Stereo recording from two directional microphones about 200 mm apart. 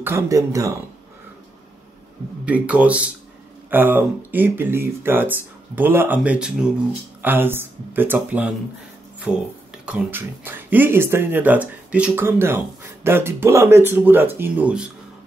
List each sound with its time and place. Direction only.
0.0 s speech: 15° right (ahead or behind)
2.4 s speech: 5° right (ahead or behind)
9.3 s a sound: 5° right (ahead or behind)
9.8 s speech: 10° right (ahead or behind)